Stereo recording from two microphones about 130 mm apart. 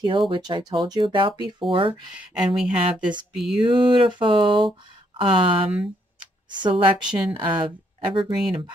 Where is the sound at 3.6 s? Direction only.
40° right (ahead or behind).